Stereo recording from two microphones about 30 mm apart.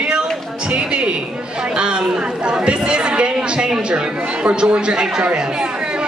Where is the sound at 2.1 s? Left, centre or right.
Right.